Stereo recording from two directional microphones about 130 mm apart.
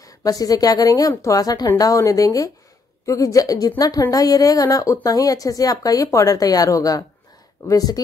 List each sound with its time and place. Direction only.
0.0 s speech: 25° left (ahead or behind)